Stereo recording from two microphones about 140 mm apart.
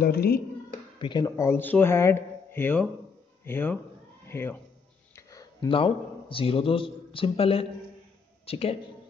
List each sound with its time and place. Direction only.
0.0 s speech: 90° left
1.2 s speech: 20° left (ahead or behind)
5.1 s a sound: 25° left (ahead or behind)
5.7 s a man's voice: 40° left (ahead or behind)